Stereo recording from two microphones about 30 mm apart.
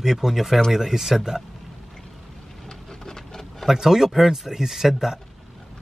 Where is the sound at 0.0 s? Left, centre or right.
Centre.